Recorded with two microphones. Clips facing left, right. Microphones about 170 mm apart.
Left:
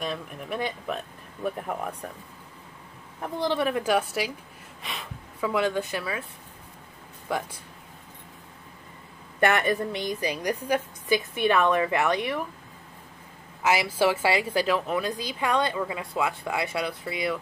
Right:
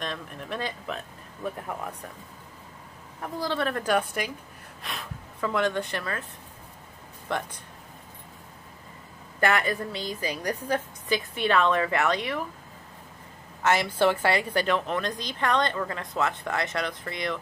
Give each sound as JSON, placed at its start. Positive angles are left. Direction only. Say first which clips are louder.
{"t": 0.0, "sound": "speech", "louder": "left 2 dB", "side_deg": 10}
{"t": 3.2, "sound": "speech", "louder": "left 3 dB", "side_deg": 20}
{"t": 7.3, "sound": "speech", "louder": "left 1 dB", "side_deg": 5}
{"t": 9.4, "sound": "speech", "louder": "left 2 dB", "side_deg": 25}
{"t": 13.6, "sound": "speech", "louder": "even", "side_deg": 5}